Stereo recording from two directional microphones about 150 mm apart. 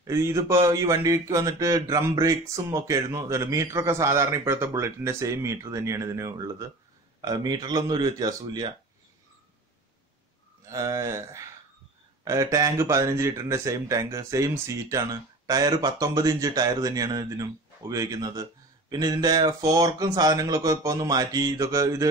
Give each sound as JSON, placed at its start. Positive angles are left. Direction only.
{"t": 0.0, "sound": "speech", "side_deg": -20}
{"t": 10.7, "sound": "speech", "side_deg": -20}